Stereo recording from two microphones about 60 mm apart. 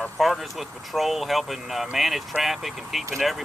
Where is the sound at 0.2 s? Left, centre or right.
Centre.